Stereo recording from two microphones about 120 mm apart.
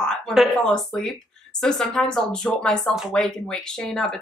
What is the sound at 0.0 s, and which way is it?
Speech, 5° left (ahead or behind).